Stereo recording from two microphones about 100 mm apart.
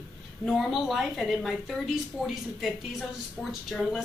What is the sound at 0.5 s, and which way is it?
A woman's voice, centre (ahead or behind).